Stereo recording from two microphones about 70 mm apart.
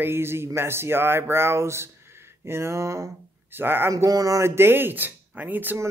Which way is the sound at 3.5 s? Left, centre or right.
Right.